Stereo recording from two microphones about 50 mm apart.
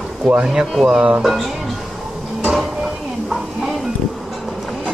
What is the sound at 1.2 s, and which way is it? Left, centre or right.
Speech, centre.